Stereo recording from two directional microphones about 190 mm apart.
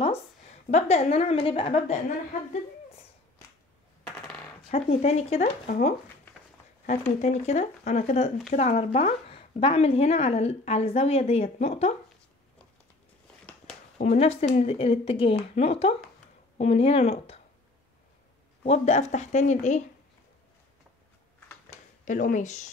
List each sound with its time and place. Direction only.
0.0 s a woman's voice: 35° left (ahead or behind)
4.6 s a woman's voice: 35° left (ahead or behind)
7.2 s a woman's voice: 35° left (ahead or behind)
13.9 s a woman's voice: 35° left (ahead or behind)
18.6 s a woman's voice: 35° left (ahead or behind)
22.0 s a woman's voice: 40° left (ahead or behind)